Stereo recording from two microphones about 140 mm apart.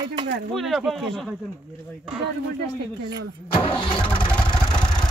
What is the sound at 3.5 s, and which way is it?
Speech, 40° left (ahead or behind).